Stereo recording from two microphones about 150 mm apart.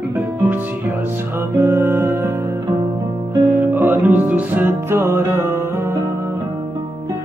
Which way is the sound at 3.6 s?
15° right (ahead or behind).